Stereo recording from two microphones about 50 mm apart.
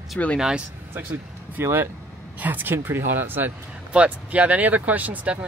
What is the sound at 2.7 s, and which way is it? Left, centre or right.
Speech, right.